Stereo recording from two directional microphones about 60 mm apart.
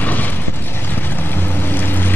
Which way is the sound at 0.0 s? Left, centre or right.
Left.